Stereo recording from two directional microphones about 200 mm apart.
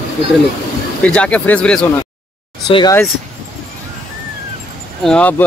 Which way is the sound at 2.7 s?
25° left (ahead or behind).